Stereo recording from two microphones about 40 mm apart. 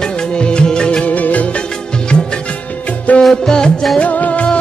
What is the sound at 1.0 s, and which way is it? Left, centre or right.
Music, left.